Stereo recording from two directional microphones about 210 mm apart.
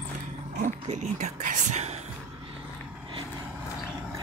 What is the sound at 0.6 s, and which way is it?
Speech, 35° right (ahead or behind).